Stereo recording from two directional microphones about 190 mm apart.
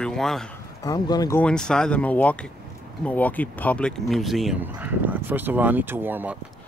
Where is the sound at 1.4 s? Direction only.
5° left (ahead or behind).